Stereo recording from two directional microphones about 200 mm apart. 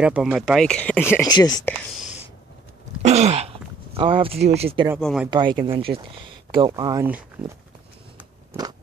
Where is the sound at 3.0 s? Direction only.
35° right (ahead or behind).